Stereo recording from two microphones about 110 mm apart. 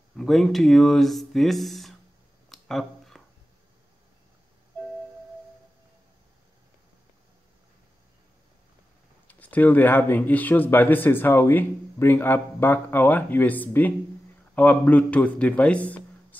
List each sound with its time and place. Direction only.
0.2 s speech: centre (ahead or behind)
2.5 s a sound: centre (ahead or behind)
9.3 s speech: 15° left (ahead or behind)